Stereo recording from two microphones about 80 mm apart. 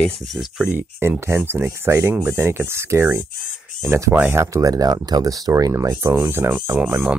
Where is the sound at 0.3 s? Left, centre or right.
Centre.